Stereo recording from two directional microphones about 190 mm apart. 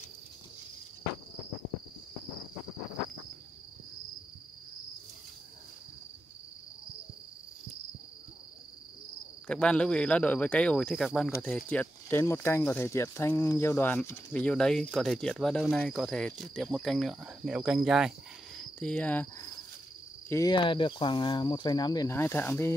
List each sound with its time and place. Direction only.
9.5 s speech: 5° left (ahead or behind)
18.6 s cricket: 5° left (ahead or behind)
20.2 s speech: 20° left (ahead or behind)